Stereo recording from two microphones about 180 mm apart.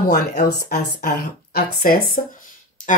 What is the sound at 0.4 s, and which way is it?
Speech, 55° left (ahead or behind).